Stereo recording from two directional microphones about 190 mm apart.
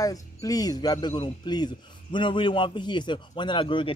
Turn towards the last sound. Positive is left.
turn(degrees=25)  # may be behind; listen again after turning